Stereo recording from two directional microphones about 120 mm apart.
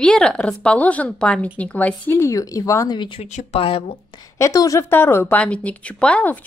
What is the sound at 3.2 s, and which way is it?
Speech, 75° left (ahead or behind).